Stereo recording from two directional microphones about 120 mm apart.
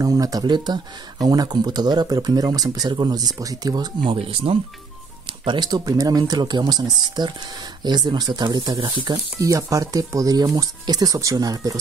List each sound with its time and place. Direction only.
0.0 s speech: 30° right (ahead or behind); by 4.6 s 50° right (ahead or behind)
5.4 s speech: 40° right (ahead or behind)